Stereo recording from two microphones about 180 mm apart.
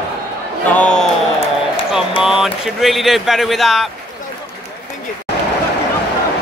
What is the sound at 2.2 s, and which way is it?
Speech, 5° right (ahead or behind).